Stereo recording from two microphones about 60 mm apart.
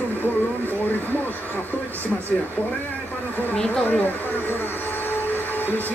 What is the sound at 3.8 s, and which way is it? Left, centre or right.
Speech, left.